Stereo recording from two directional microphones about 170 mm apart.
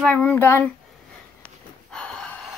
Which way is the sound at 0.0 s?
10° left (ahead or behind).